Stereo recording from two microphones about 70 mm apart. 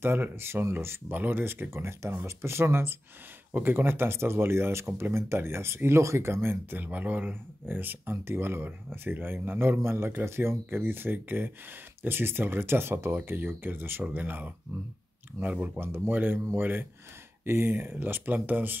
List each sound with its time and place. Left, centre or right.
0.0 s speech: right